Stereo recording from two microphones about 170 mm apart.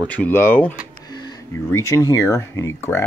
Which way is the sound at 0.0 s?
10° left (ahead or behind).